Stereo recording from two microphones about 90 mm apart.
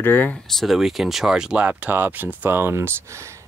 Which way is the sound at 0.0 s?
20° left (ahead or behind).